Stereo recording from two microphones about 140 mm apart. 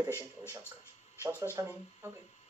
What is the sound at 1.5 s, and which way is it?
Speech, 15° right (ahead or behind).